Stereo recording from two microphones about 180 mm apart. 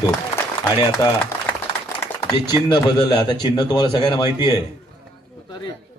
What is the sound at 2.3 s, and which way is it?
Speech, 25° left (ahead or behind).